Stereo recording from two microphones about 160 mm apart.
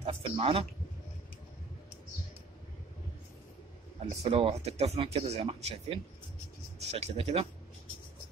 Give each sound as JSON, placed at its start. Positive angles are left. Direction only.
{"t": 0.0, "sound": "speech", "side_deg": -35}
{"t": 4.1, "sound": "speech", "side_deg": -40}